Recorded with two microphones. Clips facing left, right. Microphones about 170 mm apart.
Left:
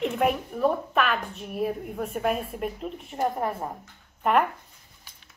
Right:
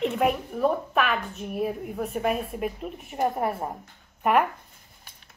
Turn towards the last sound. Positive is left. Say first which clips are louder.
# right 2 dB
turn(degrees=-55)  # may be behind; listen again after turning